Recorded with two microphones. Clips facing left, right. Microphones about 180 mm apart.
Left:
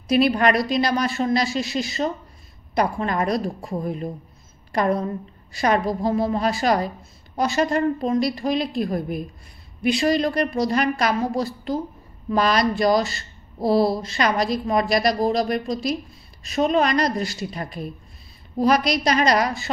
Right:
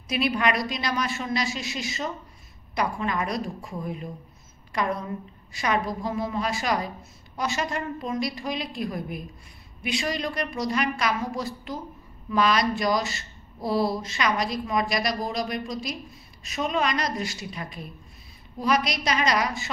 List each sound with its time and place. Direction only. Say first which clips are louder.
0.1 s a woman's voice: left 7 dB; 35° left (ahead or behind)
5.5 s a woman's voice: left 6 dB; 35° left (ahead or behind)